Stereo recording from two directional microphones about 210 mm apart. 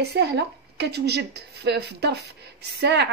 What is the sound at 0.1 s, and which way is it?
A woman's voice, 55° right (ahead or behind).